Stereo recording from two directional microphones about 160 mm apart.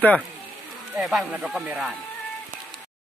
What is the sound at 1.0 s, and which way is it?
Speech, centre (ahead or behind).